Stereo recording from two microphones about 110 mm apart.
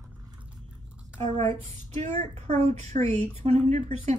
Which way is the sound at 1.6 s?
75° right (ahead or behind).